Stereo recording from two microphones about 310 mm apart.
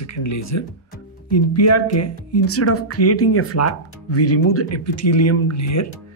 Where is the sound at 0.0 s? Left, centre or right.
Left.